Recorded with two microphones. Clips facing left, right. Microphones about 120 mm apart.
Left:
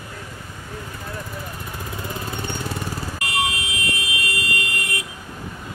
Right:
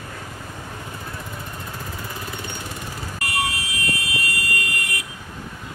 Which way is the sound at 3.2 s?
20° left (ahead or behind).